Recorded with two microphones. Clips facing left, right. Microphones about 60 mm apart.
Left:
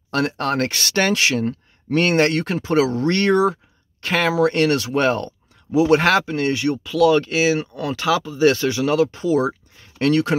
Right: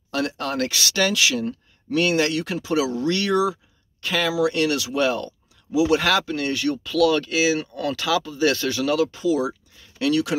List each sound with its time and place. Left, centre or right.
0.1 s speech: left
6.2 s speech: left
7.7 s speech: left